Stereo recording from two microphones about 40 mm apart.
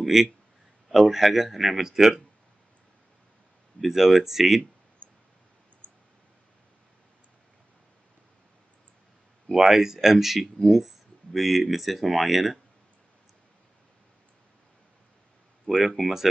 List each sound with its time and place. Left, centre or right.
0.0 s speech: centre
3.8 s speech: centre
5.0 s a sound: right
5.8 s clicking: left
9.5 s speech: centre
15.7 s speech: centre
16.0 s speech: centre